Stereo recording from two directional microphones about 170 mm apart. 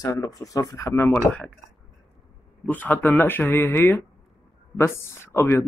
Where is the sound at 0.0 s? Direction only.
20° left (ahead or behind).